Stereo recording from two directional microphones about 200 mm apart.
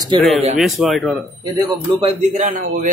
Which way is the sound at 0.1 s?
25° right (ahead or behind).